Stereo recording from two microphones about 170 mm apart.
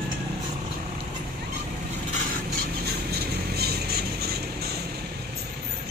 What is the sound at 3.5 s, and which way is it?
Music, 65° right (ahead or behind).